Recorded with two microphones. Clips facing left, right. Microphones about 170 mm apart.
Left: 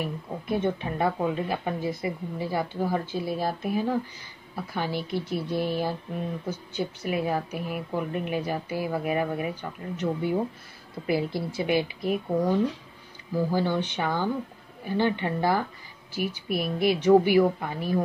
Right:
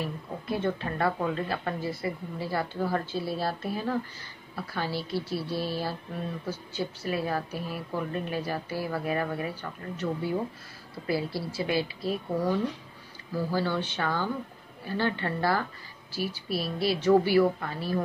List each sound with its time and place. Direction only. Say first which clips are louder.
0.0 s speech: left 2 dB; 15° left (ahead or behind)